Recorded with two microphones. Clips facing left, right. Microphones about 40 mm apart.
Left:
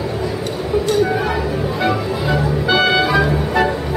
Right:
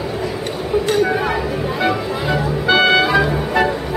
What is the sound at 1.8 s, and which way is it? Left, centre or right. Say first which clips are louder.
Music: even; centre.